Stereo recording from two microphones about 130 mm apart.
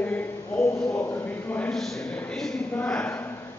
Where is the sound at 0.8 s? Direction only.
20° left (ahead or behind).